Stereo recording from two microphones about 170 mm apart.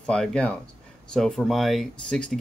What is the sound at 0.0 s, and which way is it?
Speech, 5° left (ahead or behind).